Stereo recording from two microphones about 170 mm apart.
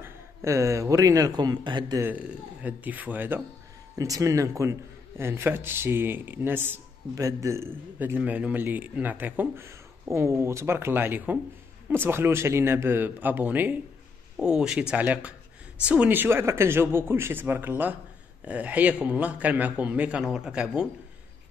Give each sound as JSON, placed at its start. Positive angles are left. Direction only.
{"t": 0.0, "sound": "a man's voice", "side_deg": -15}
{"t": 2.0, "sound": "speech", "side_deg": -10}